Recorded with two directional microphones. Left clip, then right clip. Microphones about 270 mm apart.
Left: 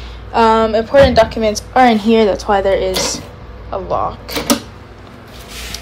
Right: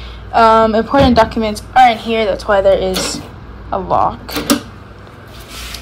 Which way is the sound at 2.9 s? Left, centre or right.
Centre.